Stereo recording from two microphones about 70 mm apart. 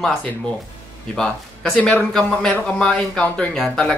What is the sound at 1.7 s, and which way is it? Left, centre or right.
Speech, centre.